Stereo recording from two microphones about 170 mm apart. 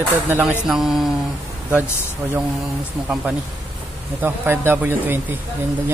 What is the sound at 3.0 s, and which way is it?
A man's voice, 5° right (ahead or behind).